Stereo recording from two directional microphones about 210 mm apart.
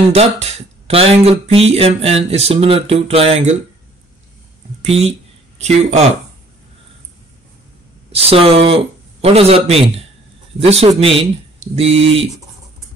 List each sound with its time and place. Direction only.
0.1 s speech: 30° right (ahead or behind)
4.8 s speech: 30° right (ahead or behind)
8.1 s speech: 30° right (ahead or behind)